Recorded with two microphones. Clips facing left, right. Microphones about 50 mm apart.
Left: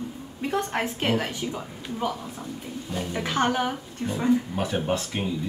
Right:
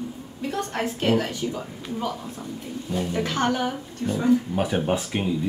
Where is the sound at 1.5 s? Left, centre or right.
Centre.